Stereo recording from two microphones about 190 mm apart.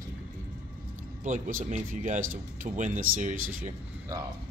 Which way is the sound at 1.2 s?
40° right (ahead or behind).